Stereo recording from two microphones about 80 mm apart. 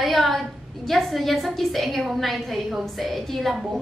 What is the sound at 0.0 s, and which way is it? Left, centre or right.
A woman's voice, centre.